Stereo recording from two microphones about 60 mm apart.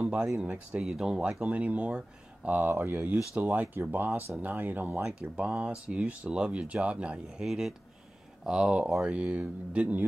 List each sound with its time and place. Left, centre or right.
0.0 s a sound: centre
0.7 s speech: centre
2.7 s speech: right
5.3 s speech: centre
7.4 s speech: centre; by 10.0 s right